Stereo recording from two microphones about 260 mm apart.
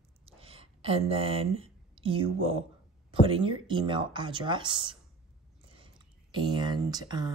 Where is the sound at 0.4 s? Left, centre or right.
Right.